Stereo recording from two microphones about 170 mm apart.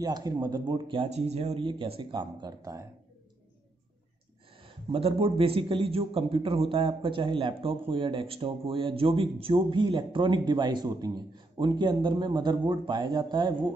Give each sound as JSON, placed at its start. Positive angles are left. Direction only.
{"t": 0.0, "sound": "a man's voice", "side_deg": -25}
{"t": 4.6, "sound": "a man's voice", "side_deg": -35}